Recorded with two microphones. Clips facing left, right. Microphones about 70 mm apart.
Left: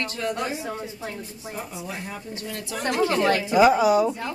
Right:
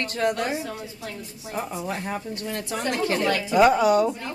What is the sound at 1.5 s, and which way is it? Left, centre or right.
A woman's voice, right.